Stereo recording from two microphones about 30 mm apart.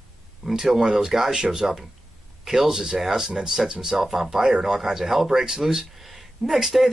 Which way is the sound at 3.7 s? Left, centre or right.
Right.